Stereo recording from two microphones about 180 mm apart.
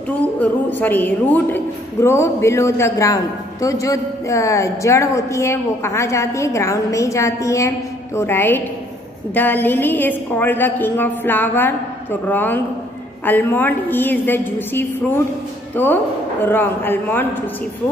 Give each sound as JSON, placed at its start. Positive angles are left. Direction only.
{"t": 0.4, "sound": "a woman's voice", "side_deg": 10}